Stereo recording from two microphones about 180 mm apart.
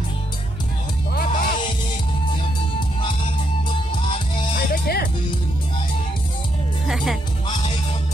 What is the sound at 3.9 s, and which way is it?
Music, 25° left (ahead or behind).